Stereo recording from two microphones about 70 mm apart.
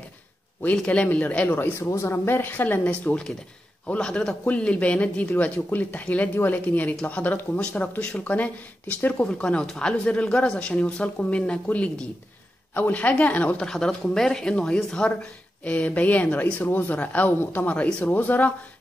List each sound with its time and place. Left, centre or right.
0.8 s speech: centre
1.9 s speech: left
9.2 s speech: centre
13.7 s speech: centre; by 18.5 s left